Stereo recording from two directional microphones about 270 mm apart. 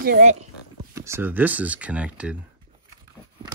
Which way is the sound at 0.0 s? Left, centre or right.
Right.